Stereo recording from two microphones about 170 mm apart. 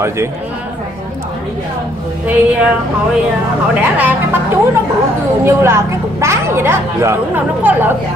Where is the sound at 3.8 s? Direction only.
10° right (ahead or behind).